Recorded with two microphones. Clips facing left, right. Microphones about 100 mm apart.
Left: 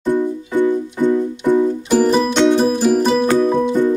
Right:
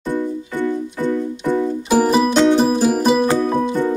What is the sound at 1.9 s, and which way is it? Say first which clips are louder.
Music: right 1 dB; 10° right (ahead or behind).